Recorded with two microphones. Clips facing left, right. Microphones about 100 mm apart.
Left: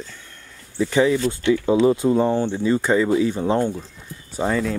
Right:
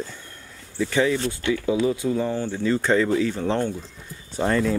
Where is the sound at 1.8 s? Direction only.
40° left (ahead or behind); by 3.8 s 15° left (ahead or behind).